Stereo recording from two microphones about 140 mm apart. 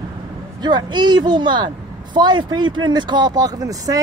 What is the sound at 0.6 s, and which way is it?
Speech, 30° right (ahead or behind).